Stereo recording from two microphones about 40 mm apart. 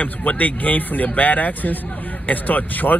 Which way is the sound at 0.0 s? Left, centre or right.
Left.